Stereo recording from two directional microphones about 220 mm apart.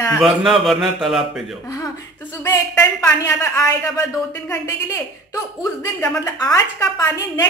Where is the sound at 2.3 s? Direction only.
15° left (ahead or behind).